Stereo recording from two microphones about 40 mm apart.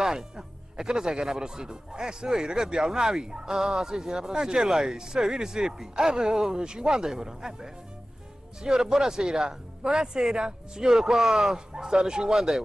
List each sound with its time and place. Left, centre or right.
0.0 s speech: centre